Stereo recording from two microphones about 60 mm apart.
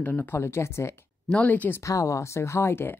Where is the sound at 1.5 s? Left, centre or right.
Left.